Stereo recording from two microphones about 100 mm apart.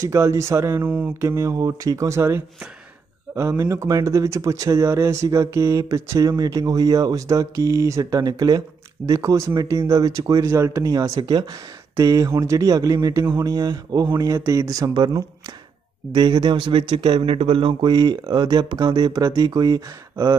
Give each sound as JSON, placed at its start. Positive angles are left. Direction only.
{"t": 0.0, "sound": "speech", "side_deg": -30}
{"t": 12.0, "sound": "speech", "side_deg": -35}
{"t": 16.1, "sound": "speech", "side_deg": -50}